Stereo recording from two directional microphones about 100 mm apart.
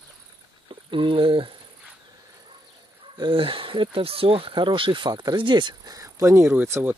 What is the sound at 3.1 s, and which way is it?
Speech, 55° right (ahead or behind).